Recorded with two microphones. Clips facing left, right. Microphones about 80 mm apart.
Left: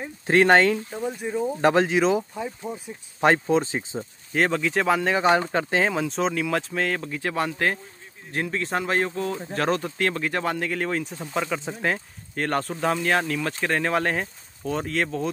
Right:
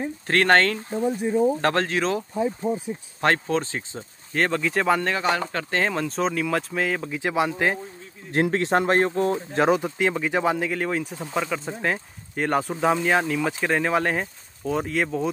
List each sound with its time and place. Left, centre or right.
0.3 s speech: centre
4.3 s speech: centre
5.1 s speech: left; by 7.8 s centre
8.4 s speech: right
9.6 s speech: centre